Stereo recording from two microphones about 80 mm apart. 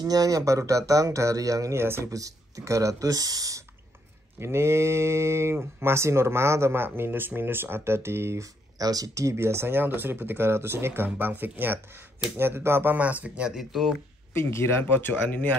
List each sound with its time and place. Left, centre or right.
0.0 s speech: right
1.8 s speech: right
2.0 s speech: right
4.4 s speech: right
8.7 s speech: right; by 13.6 s centre
13.6 s speech: centre
14.3 s speech: left